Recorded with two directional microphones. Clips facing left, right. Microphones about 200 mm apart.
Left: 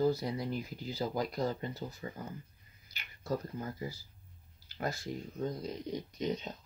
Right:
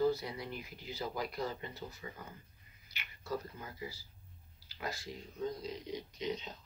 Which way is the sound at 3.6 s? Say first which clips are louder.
Left 6 dB; 45° left (ahead or behind).